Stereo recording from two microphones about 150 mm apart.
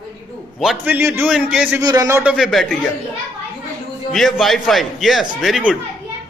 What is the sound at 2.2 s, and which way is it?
Speech, 5° right (ahead or behind).